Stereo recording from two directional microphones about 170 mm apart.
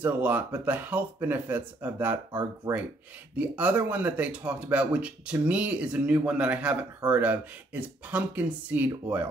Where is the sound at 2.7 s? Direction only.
10° right (ahead or behind).